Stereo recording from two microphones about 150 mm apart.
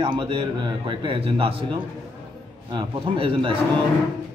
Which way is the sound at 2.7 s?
35° right (ahead or behind).